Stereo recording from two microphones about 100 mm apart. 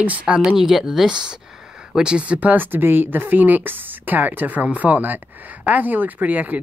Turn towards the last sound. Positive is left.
turn(degrees=-15)  # may be behind; listen again after turning